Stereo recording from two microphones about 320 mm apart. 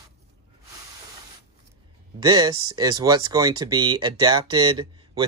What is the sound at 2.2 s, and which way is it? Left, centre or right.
Speech, centre.